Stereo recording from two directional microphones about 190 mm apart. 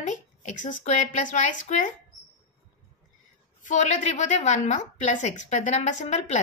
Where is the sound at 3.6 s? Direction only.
40° left (ahead or behind).